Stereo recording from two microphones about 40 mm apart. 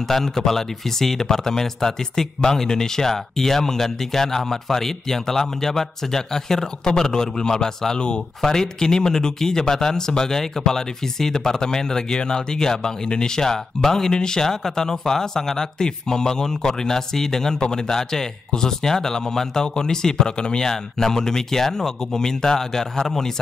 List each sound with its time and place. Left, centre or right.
0.1 s speech: centre